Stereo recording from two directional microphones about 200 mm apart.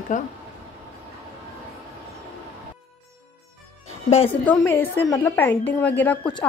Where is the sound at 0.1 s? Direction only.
40° left (ahead or behind).